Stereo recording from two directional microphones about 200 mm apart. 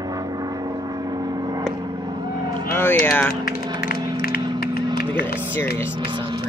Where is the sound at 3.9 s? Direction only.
20° right (ahead or behind).